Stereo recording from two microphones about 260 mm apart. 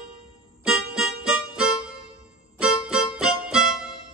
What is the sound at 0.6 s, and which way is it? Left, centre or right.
Music, centre.